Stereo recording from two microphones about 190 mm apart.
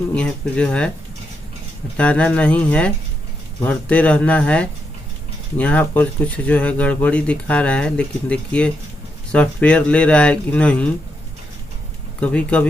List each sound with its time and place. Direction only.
0.1 s speech: 5° left (ahead or behind)
2.0 s speech: 5° left (ahead or behind)
12.2 s speech: 5° left (ahead or behind)